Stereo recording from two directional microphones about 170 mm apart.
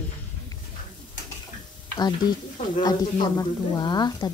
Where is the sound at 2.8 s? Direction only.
20° left (ahead or behind).